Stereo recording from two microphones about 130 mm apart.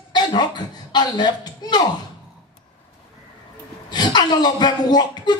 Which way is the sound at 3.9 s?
35° left (ahead or behind).